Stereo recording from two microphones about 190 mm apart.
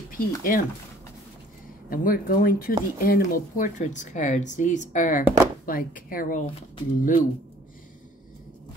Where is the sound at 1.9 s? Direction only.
50° left (ahead or behind).